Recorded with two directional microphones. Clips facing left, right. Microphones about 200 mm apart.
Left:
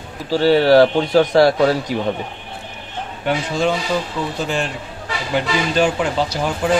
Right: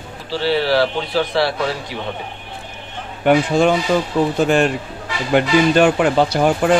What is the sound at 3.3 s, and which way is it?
Speech, 55° right (ahead or behind).